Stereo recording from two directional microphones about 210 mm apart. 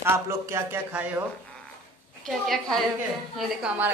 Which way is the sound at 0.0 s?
10° right (ahead or behind).